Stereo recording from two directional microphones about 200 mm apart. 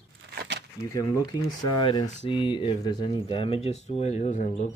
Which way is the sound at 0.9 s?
15° left (ahead or behind).